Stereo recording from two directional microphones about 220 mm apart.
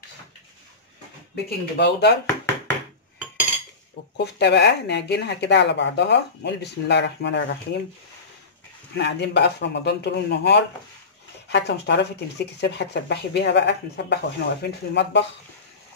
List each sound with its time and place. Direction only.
1.3 s speech: 50° left (ahead or behind)
4.2 s speech: 50° left (ahead or behind)
8.9 s speech: 50° left (ahead or behind)